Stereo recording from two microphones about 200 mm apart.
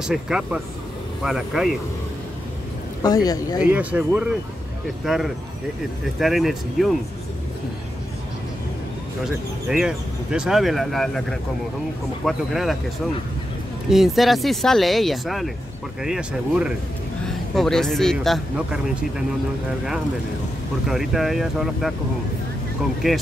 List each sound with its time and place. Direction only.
0.0 s speech: centre (ahead or behind)
3.0 s speech: 20° left (ahead or behind)
3.6 s speech: 10° right (ahead or behind)
9.2 s speech: 5° right (ahead or behind)
13.8 s speech: centre (ahead or behind)
20.8 s speech: centre (ahead or behind)
23.0 s speech: centre (ahead or behind)